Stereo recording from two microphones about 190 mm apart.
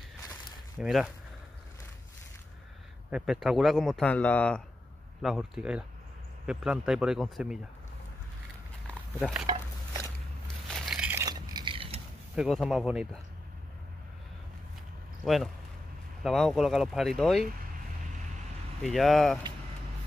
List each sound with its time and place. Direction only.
0.7 s speech: centre (ahead or behind)
3.1 s speech: 5° right (ahead or behind)
9.5 s a sound: 20° right (ahead or behind)
10.7 s a sound: 5° right (ahead or behind); by 12.0 s 30° right (ahead or behind)
12.4 s speech: centre (ahead or behind)
15.2 s speech: centre (ahead or behind)
18.8 s speech: centre (ahead or behind)